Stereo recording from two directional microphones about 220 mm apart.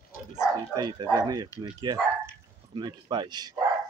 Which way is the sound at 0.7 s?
20° right (ahead or behind).